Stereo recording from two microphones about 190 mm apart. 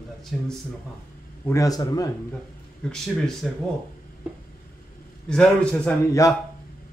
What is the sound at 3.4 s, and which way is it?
Speech, centre (ahead or behind).